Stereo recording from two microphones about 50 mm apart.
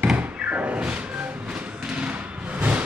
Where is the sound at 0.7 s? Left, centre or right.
Centre.